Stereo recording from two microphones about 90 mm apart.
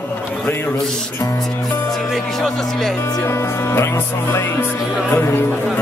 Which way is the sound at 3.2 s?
25° left (ahead or behind).